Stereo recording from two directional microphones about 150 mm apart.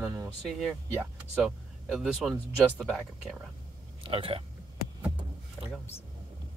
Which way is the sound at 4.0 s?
35° right (ahead or behind).